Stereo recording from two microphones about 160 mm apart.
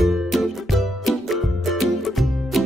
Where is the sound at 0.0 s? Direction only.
Centre (ahead or behind).